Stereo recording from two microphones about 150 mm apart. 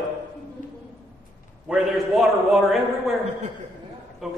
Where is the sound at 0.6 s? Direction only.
55° left (ahead or behind).